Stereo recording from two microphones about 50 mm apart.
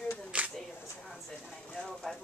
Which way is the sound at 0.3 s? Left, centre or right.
Right.